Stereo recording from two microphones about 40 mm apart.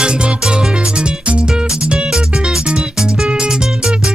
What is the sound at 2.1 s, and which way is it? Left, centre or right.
Music, centre.